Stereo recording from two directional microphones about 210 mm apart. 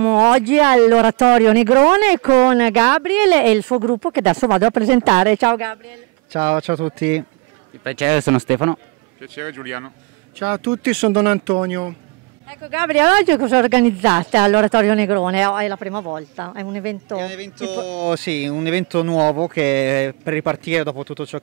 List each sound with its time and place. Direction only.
0.0 s speech: 15° right (ahead or behind)
3.7 s speech: 20° right (ahead or behind)
17.6 s speech: 30° right (ahead or behind)
18.0 s speech: 10° right (ahead or behind)
20.9 s speech: 20° right (ahead or behind)